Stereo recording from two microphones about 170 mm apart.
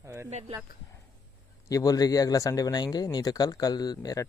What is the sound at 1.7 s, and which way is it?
A man's voice, 20° left (ahead or behind).